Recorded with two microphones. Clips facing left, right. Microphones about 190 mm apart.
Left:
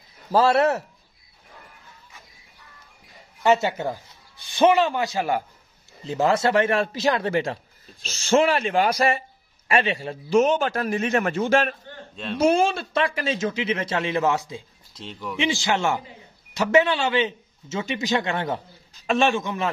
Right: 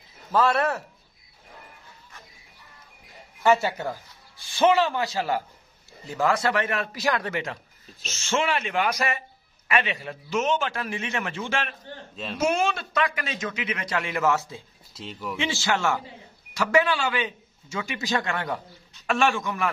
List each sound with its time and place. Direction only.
0.3 s a man's voice: 25° left (ahead or behind)
3.4 s a man's voice: 20° left (ahead or behind)
15.0 s speech: 5° right (ahead or behind)
15.3 s a man's voice: 15° left (ahead or behind)